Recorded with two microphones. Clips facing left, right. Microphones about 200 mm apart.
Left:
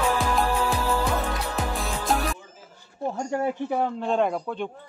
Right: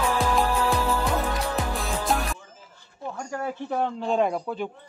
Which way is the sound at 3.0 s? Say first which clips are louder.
Left 6 dB; 30° left (ahead or behind).